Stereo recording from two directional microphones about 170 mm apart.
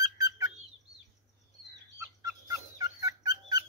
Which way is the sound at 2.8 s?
20° right (ahead or behind).